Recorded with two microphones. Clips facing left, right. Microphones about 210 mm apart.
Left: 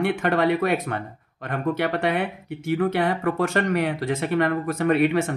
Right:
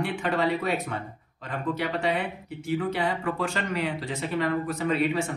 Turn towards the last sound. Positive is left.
turn(degrees=60)  # may be behind; listen again after turning